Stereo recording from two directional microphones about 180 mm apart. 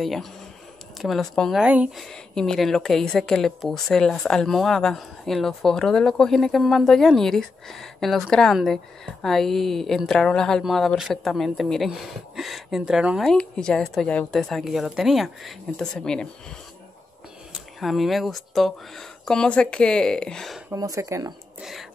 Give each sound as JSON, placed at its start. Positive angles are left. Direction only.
{"t": 0.0, "sound": "a woman's voice", "side_deg": 0}
{"t": 17.7, "sound": "a woman's voice", "side_deg": 0}
{"t": 20.7, "sound": "speech", "side_deg": -20}
{"t": 21.5, "sound": "speech", "side_deg": 0}